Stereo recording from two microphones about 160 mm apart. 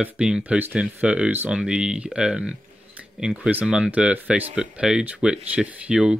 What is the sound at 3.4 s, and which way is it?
Speech, 5° right (ahead or behind).